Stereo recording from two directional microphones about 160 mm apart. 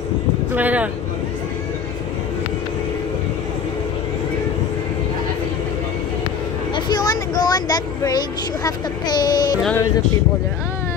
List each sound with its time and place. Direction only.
0.6 s vehicle: 10° right (ahead or behind)
6.7 s vehicle: 25° left (ahead or behind)
8.6 s speech: 25° left (ahead or behind)